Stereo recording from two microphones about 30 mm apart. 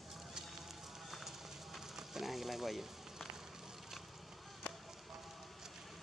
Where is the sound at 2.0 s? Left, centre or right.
Centre.